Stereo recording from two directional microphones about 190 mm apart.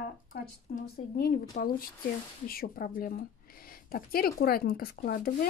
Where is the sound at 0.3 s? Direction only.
50° left (ahead or behind).